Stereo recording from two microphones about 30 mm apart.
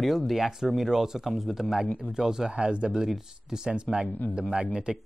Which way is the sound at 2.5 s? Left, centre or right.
Right.